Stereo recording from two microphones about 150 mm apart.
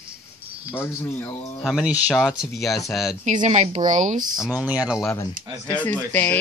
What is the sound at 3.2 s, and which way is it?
Speech, 55° right (ahead or behind).